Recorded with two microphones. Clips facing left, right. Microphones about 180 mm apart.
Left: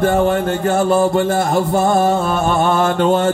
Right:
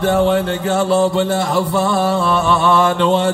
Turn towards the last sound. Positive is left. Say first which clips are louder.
# even
turn(degrees=45)  # may be behind; listen again after turning